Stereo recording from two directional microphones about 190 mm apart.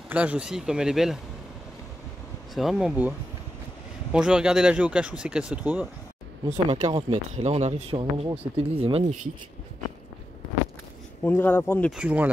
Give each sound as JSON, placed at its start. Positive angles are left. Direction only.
{"t": 0.1, "sound": "speech", "side_deg": -5}
{"t": 2.5, "sound": "speech", "side_deg": 0}
{"t": 6.5, "sound": "speech", "side_deg": -30}
{"t": 7.3, "sound": "speech", "side_deg": -35}
{"t": 11.2, "sound": "speech", "side_deg": 10}
{"t": 11.9, "sound": "speech", "side_deg": -5}